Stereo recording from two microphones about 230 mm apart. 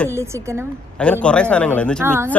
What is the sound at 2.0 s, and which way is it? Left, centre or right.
Speech, centre.